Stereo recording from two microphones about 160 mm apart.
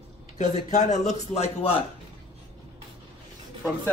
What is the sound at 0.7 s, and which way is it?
A man's voice, 45° left (ahead or behind).